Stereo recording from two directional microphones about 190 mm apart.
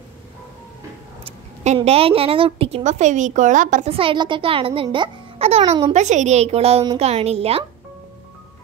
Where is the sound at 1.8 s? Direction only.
30° right (ahead or behind).